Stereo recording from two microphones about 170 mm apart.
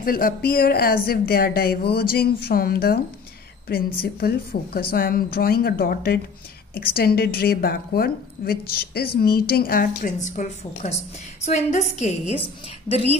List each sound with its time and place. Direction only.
0.0 s a woman's voice: 60° left (ahead or behind)
4.0 s a woman's voice: 65° left (ahead or behind); by 13.2 s 35° left (ahead or behind)